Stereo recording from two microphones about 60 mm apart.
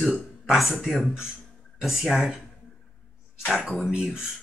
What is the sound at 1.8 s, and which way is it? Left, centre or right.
Speech, centre.